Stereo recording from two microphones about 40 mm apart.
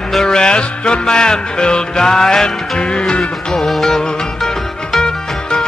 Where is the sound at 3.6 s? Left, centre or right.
Centre.